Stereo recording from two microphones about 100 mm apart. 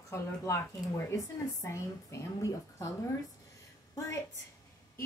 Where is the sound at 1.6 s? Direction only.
30° left (ahead or behind).